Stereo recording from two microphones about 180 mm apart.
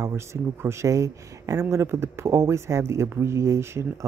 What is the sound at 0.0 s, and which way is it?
Speech, 15° right (ahead or behind).